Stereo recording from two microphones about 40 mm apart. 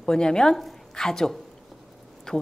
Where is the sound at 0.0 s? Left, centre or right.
Centre.